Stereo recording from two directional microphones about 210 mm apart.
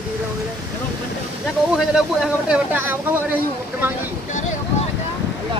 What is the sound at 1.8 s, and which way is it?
Speech, centre (ahead or behind).